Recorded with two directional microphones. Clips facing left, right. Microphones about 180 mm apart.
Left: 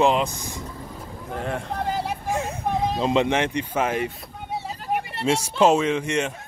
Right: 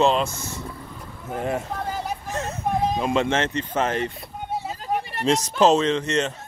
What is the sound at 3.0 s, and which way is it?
Speech, 20° left (ahead or behind).